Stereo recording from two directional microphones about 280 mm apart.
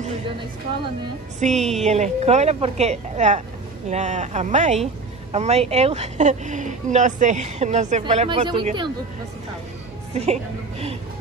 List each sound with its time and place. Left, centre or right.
1.6 s speech: centre
1.9 s speech: right
10.1 s a woman's voice: right